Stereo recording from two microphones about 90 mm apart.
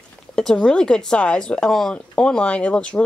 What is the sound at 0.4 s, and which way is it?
Speech, 10° left (ahead or behind).